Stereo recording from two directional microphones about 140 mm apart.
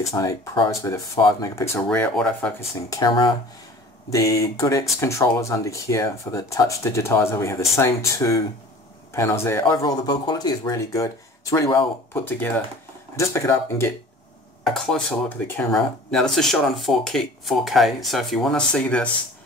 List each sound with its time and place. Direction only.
0.1 s speech: 25° left (ahead or behind)
1.9 s speech: 5° left (ahead or behind)
2.7 s speech: 25° left (ahead or behind)
4.1 s speech: 25° left (ahead or behind)
9.8 s speech: 30° left (ahead or behind)
14.6 s speech: 5° left (ahead or behind)